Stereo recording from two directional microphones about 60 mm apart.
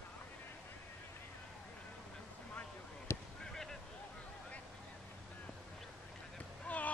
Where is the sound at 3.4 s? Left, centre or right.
Centre.